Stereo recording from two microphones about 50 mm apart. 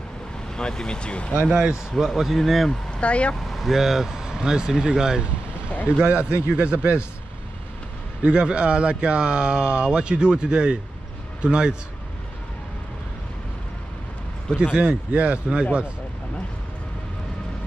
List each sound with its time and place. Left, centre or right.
0.6 s speech: centre
1.5 s speech: centre
2.9 s speech: left
3.3 s speech: centre
6.0 s speech: right
8.2 s speech: centre
14.6 s speech: right